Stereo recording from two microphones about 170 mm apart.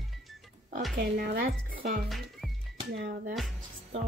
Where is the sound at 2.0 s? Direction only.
Centre (ahead or behind).